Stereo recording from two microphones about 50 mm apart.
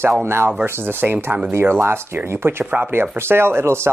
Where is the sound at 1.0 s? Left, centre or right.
Right.